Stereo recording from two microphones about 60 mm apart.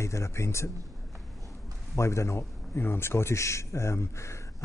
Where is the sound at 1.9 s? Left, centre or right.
Left.